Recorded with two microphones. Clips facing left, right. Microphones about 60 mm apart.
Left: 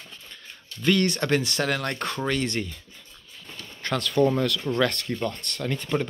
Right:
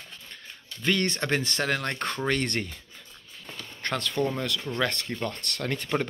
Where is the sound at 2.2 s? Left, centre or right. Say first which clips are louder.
Left 1 dB; right.